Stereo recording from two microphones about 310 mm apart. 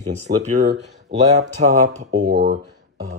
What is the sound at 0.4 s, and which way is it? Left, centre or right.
Speech, right.